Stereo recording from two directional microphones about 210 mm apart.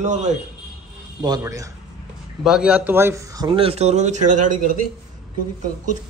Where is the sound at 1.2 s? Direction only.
15° right (ahead or behind).